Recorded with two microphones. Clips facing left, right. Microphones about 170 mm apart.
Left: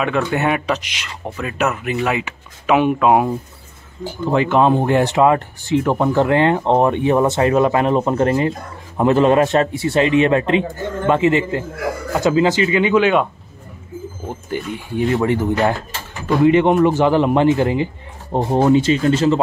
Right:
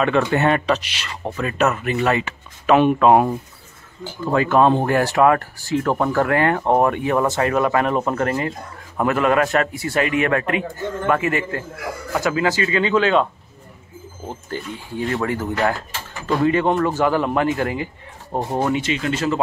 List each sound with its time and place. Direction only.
0.3 s speech: 10° left (ahead or behind)
4.2 s speech: 20° left (ahead or behind)
14.5 s speech: 20° left (ahead or behind)